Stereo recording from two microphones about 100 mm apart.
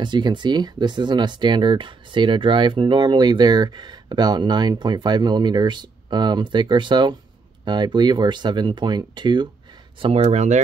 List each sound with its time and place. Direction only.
0.0 s speech: 50° right (ahead or behind)
9.9 s speech: 65° right (ahead or behind)